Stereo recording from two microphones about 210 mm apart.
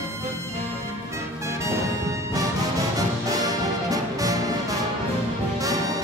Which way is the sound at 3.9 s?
15° right (ahead or behind).